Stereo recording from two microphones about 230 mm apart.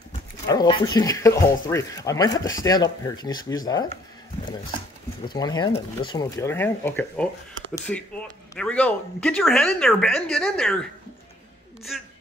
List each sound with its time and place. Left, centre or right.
0.5 s speech: centre
5.3 s speech: centre
11.9 s speech: centre